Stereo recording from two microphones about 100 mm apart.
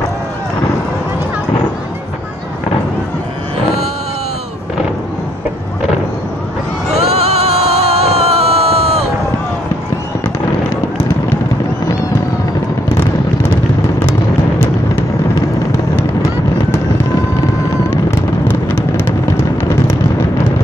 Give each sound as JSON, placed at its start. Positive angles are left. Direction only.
{"t": 6.9, "sound": "music", "side_deg": -90}
{"t": 18.5, "sound": "vehicle", "side_deg": 20}